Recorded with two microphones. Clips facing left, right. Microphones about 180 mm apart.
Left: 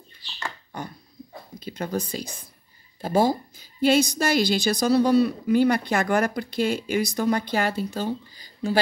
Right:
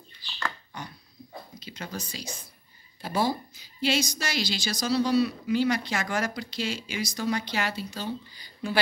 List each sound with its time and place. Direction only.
0.7 s dog: 50° left (ahead or behind)
1.6 s a woman's voice: 55° left (ahead or behind)